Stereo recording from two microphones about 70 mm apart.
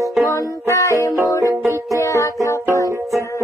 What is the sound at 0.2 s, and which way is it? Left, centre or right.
Music, left.